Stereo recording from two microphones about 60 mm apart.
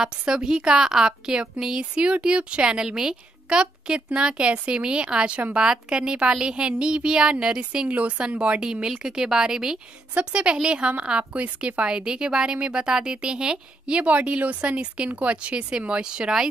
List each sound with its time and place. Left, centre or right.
0.0 s a woman's voice: centre